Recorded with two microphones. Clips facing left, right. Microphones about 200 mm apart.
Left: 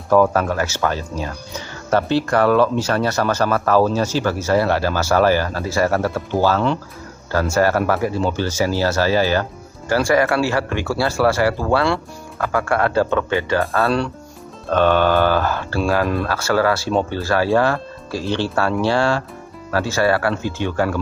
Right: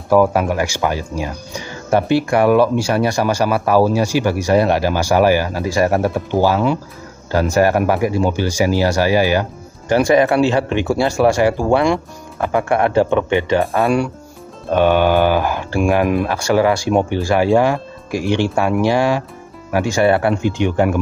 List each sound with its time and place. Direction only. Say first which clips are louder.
0.1 s speech: right 2 dB; 10° right (ahead or behind)